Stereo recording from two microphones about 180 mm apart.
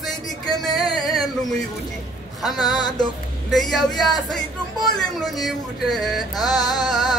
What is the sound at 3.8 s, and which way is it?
Music, 20° left (ahead or behind).